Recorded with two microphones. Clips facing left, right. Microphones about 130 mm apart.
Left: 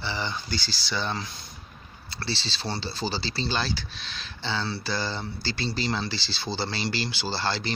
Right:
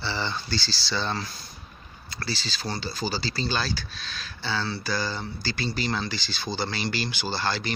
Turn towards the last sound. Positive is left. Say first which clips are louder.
# even
turn(degrees=25)  # may be behind; listen again after turning